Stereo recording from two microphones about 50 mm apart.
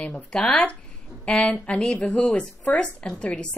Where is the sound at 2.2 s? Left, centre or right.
Centre.